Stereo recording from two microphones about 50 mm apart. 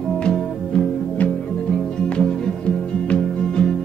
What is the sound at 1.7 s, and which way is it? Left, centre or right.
Music, centre.